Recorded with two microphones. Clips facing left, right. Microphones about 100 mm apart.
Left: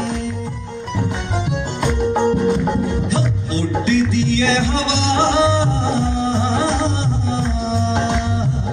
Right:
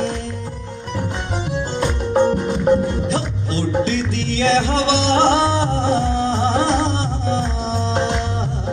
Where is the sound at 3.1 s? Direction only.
45° right (ahead or behind).